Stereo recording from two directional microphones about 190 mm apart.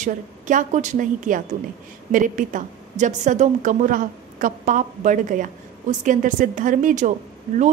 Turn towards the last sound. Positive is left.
turn(degrees=-40)  # may be behind; listen again after turning